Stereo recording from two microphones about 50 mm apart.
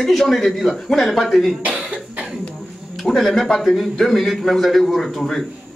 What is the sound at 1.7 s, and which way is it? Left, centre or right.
Cough, right.